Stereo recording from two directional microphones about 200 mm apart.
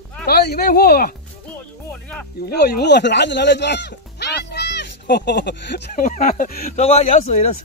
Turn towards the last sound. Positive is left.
turn(degrees=35)  # may be behind; listen again after turning